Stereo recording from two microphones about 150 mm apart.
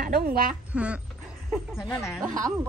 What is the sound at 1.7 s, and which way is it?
Speech, 20° left (ahead or behind).